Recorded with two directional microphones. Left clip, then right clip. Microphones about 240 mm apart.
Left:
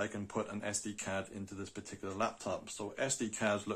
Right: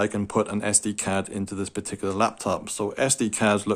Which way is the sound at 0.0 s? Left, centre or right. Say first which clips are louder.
Right 14 dB; right.